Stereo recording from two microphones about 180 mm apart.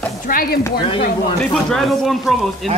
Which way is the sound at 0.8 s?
30° left (ahead or behind).